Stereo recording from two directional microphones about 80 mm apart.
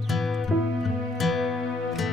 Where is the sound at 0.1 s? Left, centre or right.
Centre.